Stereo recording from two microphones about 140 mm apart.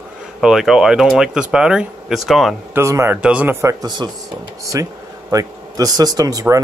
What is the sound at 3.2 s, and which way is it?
Speech, 10° right (ahead or behind).